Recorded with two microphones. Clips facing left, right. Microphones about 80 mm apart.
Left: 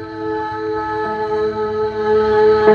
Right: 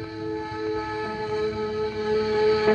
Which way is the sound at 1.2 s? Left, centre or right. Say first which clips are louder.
Left 7 dB; left.